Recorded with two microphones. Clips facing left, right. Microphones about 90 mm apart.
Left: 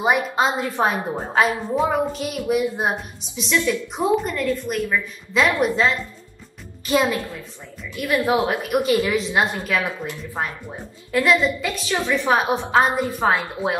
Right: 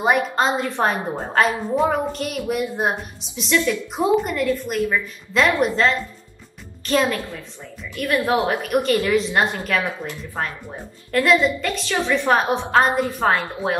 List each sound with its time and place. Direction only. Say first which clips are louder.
0.0 s a woman's voice: right 1 dB; 5° left (ahead or behind)
6.9 s a woman's voice: even; 10° left (ahead or behind)